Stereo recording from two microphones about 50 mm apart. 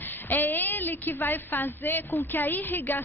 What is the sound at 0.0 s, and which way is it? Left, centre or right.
A woman's voice, left.